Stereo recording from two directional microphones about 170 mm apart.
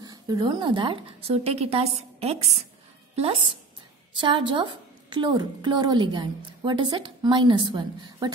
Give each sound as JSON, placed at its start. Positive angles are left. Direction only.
{"t": 0.0, "sound": "a woman's voice", "side_deg": -25}
{"t": 4.1, "sound": "a woman's voice", "side_deg": -30}